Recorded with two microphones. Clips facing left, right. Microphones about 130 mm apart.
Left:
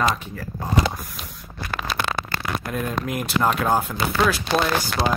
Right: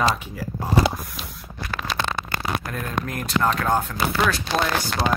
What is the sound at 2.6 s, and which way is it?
Speech, 10° left (ahead or behind).